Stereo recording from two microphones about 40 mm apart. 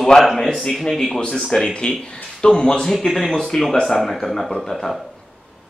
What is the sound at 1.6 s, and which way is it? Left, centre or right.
Speech, left.